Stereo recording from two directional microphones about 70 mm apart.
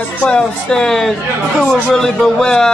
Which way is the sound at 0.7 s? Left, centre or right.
Centre.